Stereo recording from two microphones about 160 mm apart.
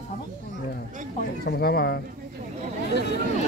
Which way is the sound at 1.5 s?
80° left.